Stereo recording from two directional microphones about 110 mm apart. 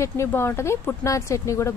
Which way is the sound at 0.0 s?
25° left (ahead or behind).